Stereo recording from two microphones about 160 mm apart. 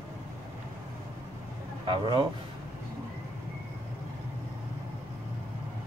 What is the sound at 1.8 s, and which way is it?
Speech, 30° right (ahead or behind).